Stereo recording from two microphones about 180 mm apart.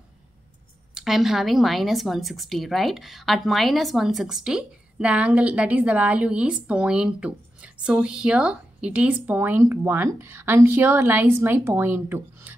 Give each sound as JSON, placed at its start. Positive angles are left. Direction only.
{"t": 0.9, "sound": "speech", "side_deg": 0}